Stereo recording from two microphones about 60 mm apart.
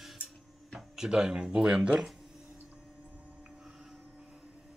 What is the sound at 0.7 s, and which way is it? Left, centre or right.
Speech, centre.